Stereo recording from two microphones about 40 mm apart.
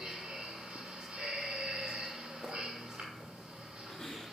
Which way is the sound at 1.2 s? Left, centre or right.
Centre.